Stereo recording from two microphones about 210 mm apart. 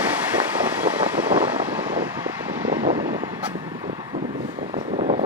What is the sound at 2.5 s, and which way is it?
Vehicle, 10° right (ahead or behind).